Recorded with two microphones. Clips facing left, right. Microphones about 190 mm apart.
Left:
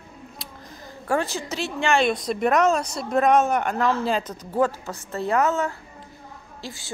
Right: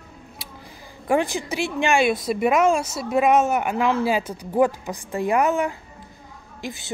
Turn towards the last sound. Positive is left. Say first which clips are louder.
# right 4 dB
turn(degrees=-20)  # may be behind; listen again after turning